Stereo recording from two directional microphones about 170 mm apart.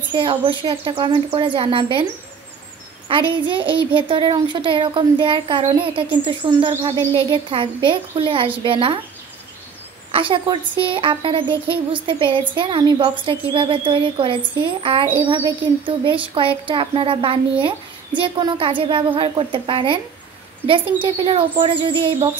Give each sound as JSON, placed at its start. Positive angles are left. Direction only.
{"t": 0.1, "sound": "a woman's voice", "side_deg": -30}
{"t": 3.1, "sound": "a woman's voice", "side_deg": -30}
{"t": 10.1, "sound": "a woman's voice", "side_deg": -30}